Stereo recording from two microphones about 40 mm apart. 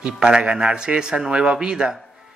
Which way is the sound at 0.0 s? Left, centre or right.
Right.